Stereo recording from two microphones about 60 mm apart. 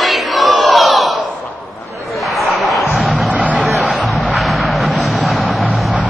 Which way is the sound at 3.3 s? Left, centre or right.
Right.